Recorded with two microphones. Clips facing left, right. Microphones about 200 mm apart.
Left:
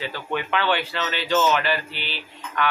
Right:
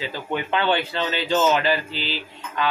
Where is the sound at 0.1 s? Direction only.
20° right (ahead or behind).